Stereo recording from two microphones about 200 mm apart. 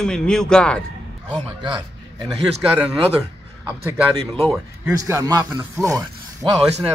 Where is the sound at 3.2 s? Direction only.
10° right (ahead or behind).